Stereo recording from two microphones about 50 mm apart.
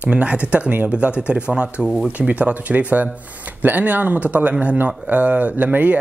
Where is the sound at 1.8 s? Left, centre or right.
Centre.